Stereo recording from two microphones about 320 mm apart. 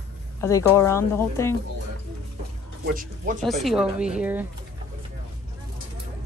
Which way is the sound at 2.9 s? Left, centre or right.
Right.